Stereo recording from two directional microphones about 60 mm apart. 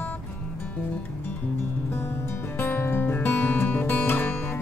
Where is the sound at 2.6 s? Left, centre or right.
Left.